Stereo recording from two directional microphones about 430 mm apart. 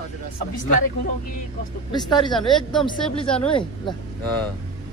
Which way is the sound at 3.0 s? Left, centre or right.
Centre.